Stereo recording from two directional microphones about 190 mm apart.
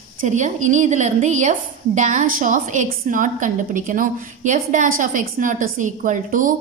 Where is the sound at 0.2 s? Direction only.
40° right (ahead or behind).